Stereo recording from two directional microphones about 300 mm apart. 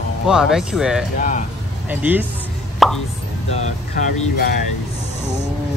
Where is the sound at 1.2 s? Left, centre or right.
Left.